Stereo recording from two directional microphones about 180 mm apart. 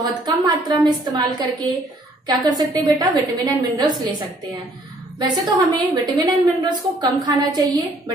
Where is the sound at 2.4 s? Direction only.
20° right (ahead or behind).